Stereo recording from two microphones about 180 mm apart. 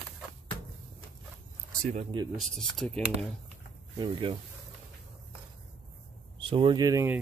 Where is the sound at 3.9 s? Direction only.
30° right (ahead or behind).